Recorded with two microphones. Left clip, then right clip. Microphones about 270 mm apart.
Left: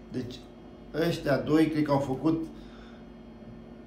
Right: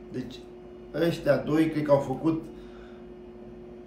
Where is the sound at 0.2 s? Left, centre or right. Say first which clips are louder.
Left 1 dB; centre.